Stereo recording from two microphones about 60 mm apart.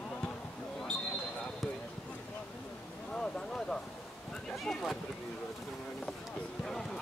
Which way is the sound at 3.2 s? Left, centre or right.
Centre.